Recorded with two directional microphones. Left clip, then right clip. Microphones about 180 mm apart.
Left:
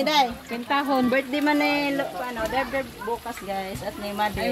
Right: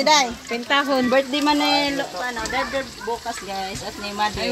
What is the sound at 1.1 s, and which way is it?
Speech, 20° right (ahead or behind).